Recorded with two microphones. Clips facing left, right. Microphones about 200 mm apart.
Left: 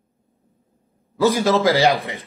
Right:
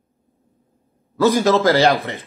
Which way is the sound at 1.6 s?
15° left (ahead or behind).